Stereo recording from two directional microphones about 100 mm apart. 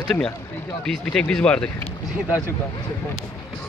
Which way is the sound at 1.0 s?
10° left (ahead or behind).